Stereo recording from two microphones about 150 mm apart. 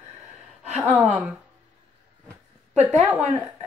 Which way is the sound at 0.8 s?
10° right (ahead or behind).